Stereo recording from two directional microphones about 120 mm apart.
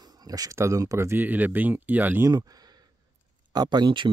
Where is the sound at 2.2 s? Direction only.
30° right (ahead or behind).